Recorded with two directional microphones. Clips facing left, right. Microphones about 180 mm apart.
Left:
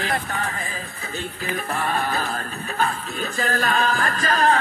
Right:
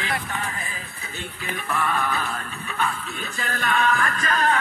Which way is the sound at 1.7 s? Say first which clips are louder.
Right 1 dB; 35° left (ahead or behind).